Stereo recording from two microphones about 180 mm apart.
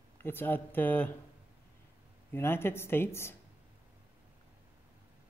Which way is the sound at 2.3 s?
10° left (ahead or behind).